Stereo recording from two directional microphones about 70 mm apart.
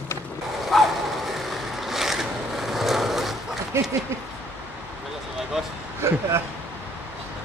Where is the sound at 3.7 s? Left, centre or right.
Right.